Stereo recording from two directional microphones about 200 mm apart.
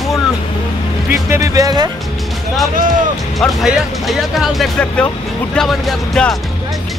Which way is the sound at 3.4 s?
Centre (ahead or behind).